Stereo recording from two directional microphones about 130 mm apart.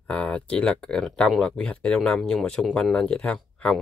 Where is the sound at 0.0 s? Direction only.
10° left (ahead or behind).